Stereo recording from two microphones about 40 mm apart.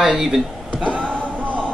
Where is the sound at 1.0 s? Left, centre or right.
Left.